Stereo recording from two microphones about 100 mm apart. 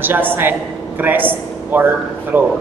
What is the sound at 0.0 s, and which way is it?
A man's voice, 20° right (ahead or behind).